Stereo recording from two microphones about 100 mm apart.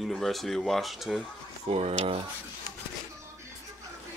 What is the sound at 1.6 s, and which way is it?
Speech, 80° right.